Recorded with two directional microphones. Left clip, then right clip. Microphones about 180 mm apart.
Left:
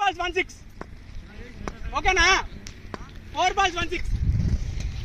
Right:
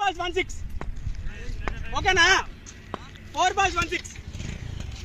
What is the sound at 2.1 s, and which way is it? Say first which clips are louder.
A man's voice: right 1 dB; 10° left (ahead or behind).